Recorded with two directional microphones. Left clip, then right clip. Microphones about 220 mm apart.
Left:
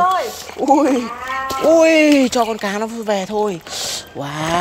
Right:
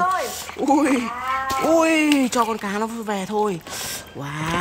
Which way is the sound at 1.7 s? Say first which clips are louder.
Left 7 dB; centre (ahead or behind).